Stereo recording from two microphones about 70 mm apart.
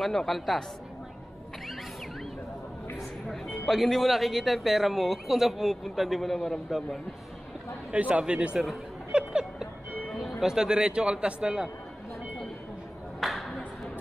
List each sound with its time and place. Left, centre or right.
0.0 s a man's voice: centre
3.6 s a man's voice: centre
7.9 s a man's voice: centre
13.2 s clapping: centre